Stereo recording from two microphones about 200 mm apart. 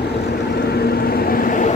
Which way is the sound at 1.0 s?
50° left (ahead or behind).